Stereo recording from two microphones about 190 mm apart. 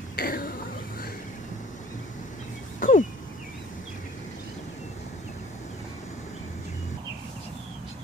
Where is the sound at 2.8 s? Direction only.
45° left (ahead or behind).